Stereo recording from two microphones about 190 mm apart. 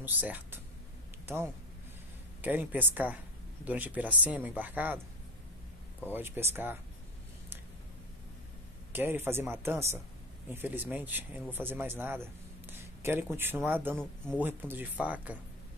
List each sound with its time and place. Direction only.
0.0 s speech: 10° right (ahead or behind)
6.1 s speech: 10° right (ahead or behind)
8.9 s a man's voice: 10° right (ahead or behind)
13.9 s speech: 5° left (ahead or behind)
14.4 s speech: 10° right (ahead or behind)